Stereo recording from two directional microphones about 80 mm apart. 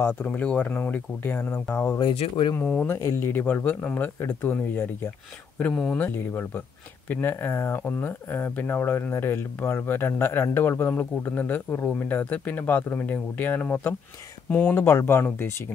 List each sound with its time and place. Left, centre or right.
0.0 s speech: centre
2.0 s speech: left
2.6 s speech: centre
2.9 s speech: left